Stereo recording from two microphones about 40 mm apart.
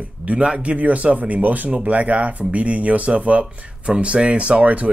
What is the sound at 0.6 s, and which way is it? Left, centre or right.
Speech, right.